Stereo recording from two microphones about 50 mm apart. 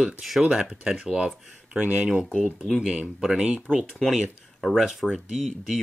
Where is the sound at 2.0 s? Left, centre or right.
Centre.